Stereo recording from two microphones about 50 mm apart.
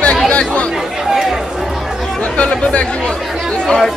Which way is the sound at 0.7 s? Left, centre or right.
Centre.